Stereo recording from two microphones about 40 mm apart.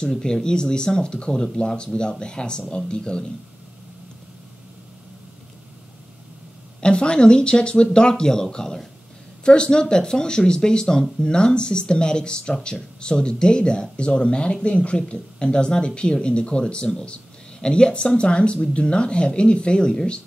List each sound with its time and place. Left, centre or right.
0.0 s speech: centre
6.8 s speech: left